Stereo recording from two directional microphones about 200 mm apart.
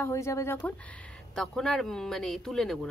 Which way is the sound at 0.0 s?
15° left (ahead or behind).